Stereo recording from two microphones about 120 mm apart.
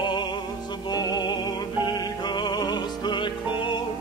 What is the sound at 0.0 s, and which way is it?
Music, 40° left (ahead or behind).